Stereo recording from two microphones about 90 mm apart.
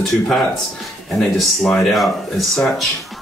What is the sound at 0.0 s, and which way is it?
Speech, 5° left (ahead or behind).